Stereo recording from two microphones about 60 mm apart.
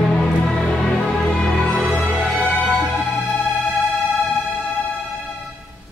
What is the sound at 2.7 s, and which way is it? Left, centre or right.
Music, centre.